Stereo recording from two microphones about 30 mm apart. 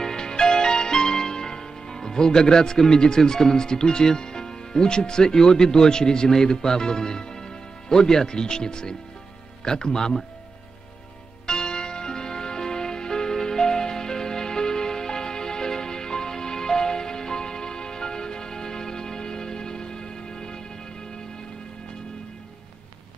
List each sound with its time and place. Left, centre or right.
0.0 s music: left
9.7 s speech: left
11.4 s music: left